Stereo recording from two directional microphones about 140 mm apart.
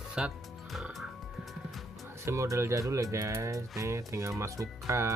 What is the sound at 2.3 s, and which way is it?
Speech, 20° right (ahead or behind).